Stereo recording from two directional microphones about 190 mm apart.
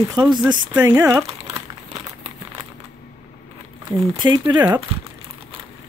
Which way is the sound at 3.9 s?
25° right (ahead or behind).